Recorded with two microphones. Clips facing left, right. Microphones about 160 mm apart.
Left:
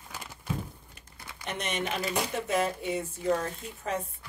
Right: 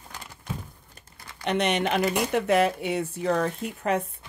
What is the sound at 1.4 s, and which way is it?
Speech, 75° right (ahead or behind).